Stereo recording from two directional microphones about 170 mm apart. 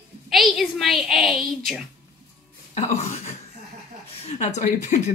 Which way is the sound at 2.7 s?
40° left (ahead or behind).